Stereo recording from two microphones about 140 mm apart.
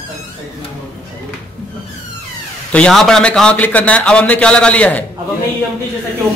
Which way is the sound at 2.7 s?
5° left (ahead or behind).